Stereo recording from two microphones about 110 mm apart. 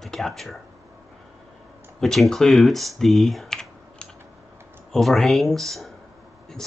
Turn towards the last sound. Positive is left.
turn(degrees=0)  # may be behind; listen again after turning